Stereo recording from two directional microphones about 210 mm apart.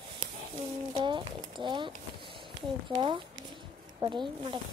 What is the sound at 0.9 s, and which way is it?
Speech, 20° right (ahead or behind).